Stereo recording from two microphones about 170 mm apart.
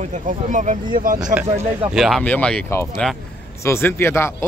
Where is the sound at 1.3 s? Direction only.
10° right (ahead or behind).